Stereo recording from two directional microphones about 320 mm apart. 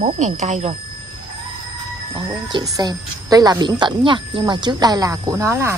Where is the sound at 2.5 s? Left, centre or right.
Centre.